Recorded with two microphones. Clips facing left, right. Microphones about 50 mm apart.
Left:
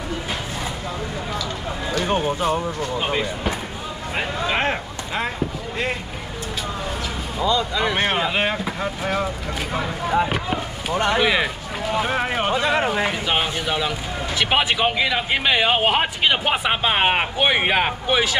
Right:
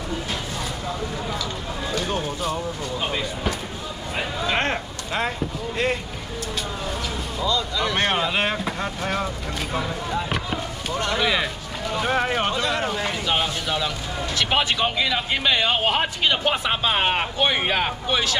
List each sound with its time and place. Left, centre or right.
2.0 s speech: left
4.6 s a sound: centre
7.3 s speech: left
10.0 s speech: left; by 12.5 s centre
12.5 s speech: left